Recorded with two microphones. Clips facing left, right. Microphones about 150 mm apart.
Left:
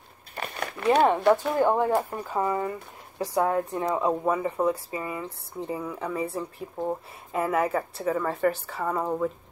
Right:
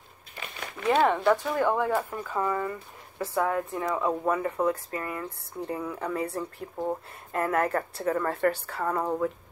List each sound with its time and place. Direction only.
0.4 s a sound: 60° left (ahead or behind)
0.8 s speech: 15° left (ahead or behind)
4.1 s speech: 10° left (ahead or behind)